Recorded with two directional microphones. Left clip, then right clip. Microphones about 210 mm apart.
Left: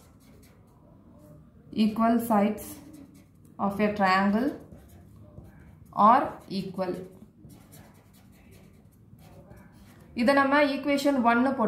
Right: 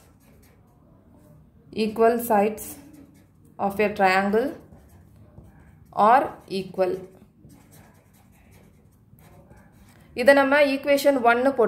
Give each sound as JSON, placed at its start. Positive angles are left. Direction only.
{"t": 2.0, "sound": "a woman's voice", "side_deg": -50}
{"t": 5.9, "sound": "a woman's voice", "side_deg": -50}
{"t": 10.1, "sound": "a woman's voice", "side_deg": -50}